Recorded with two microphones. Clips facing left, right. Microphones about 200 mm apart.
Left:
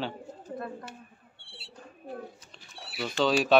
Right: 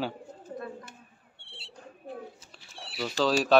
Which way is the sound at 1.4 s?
25° right (ahead or behind).